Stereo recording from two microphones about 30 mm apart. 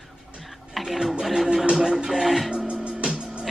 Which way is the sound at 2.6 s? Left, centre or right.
Right.